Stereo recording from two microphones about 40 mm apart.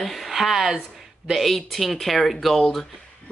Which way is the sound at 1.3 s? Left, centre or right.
Centre.